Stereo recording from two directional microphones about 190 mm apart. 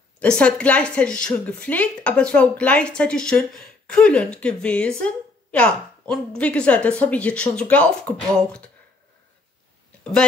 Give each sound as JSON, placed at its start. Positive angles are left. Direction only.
{"t": 0.2, "sound": "speech", "side_deg": 5}